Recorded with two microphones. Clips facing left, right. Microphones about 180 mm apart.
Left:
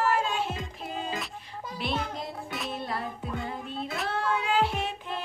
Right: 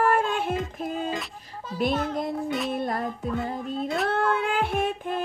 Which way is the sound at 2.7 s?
45° right (ahead or behind).